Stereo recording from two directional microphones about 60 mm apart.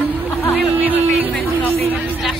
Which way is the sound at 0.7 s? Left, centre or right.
Right.